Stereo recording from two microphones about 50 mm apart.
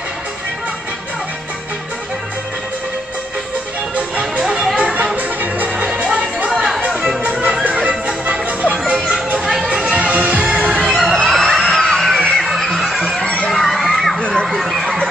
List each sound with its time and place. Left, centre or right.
4.2 s music: centre
4.9 s music: right
6.5 s music: centre
8.3 s music: right
8.9 s children playing: centre
9.4 s music: centre
11.0 s music: centre
12.4 s a sound: centre
13.2 s a sound: left
13.5 s crowd: centre
14.2 s a sound: centre
14.5 s a sound: centre